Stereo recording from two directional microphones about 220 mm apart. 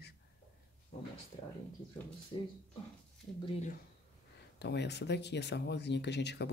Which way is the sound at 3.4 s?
35° left (ahead or behind).